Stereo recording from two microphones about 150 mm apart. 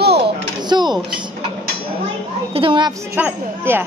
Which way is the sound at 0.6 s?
30° right (ahead or behind).